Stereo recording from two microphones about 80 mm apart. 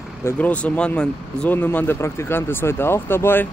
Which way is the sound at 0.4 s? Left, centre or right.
Centre.